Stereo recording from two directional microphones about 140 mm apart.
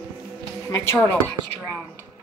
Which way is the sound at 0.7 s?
15° left (ahead or behind).